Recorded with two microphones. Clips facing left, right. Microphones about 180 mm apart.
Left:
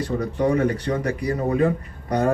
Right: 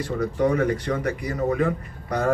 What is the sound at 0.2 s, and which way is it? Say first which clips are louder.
Speech: even; 30° left (ahead or behind).